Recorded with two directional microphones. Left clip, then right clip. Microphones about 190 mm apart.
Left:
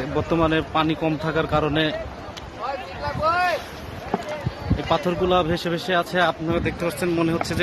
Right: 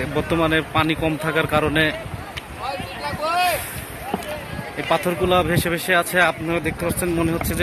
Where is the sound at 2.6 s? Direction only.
45° right (ahead or behind).